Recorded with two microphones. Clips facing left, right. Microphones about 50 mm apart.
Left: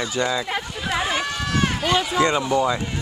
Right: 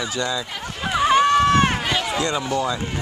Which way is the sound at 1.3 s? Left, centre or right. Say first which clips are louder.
Right 8 dB; right.